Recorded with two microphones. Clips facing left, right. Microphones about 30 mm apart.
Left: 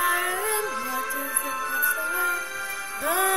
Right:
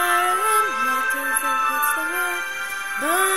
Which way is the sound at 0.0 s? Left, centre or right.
Right.